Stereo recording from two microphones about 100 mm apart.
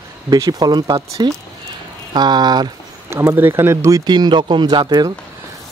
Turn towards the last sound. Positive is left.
turn(degrees=-45)  # may be behind; listen again after turning